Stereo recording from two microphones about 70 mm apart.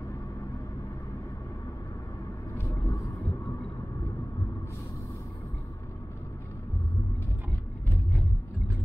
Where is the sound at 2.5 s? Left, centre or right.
Left.